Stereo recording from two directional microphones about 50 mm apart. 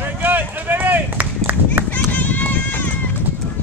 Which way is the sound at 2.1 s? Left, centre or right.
Left.